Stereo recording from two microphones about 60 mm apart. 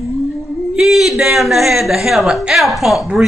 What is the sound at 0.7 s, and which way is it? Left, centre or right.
A woman's voice, centre.